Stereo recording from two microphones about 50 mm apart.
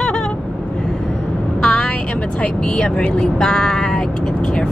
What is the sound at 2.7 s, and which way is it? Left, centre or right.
Speech, centre.